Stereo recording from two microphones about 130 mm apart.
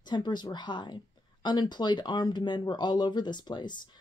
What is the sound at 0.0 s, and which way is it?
Speech, 35° left (ahead or behind).